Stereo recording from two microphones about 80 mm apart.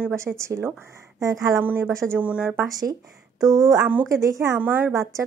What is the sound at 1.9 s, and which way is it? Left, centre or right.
Speech, right.